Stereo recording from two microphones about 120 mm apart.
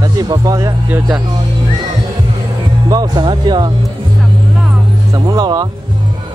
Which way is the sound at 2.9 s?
35° right (ahead or behind).